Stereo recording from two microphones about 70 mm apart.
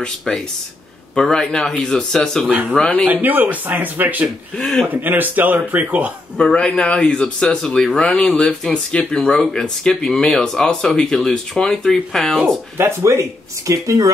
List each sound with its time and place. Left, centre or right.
1.1 s speech: centre
3.1 s speech: right
4.6 s speech: centre
4.8 s speech: right
6.3 s speech: centre
12.7 s speech: right
13.7 s speech: right